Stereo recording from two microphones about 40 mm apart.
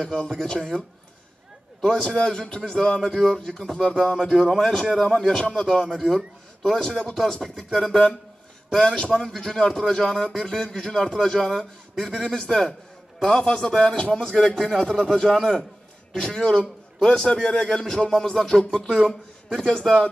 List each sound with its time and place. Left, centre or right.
0.0 s speech: left
1.8 s speech: centre
5.9 s speech: centre
8.8 s a man's voice: left